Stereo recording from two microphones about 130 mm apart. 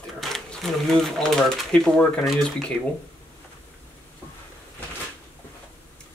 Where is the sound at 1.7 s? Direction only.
5° left (ahead or behind).